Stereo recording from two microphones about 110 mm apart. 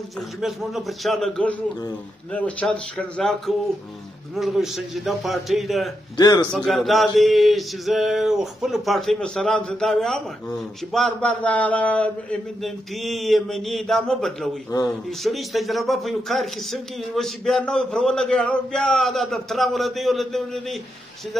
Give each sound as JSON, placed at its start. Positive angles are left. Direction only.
{"t": 0.4, "sound": "a man's voice", "side_deg": -5}
{"t": 2.3, "sound": "a man's voice", "side_deg": 10}
{"t": 6.1, "sound": "speech", "side_deg": 40}
{"t": 6.5, "sound": "a man's voice", "side_deg": 0}
{"t": 12.6, "sound": "a man's voice", "side_deg": 0}